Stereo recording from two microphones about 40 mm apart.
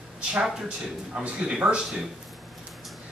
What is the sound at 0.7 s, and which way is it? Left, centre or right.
Speech, right.